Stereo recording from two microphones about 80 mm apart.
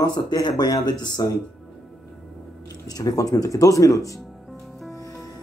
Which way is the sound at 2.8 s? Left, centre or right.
Left.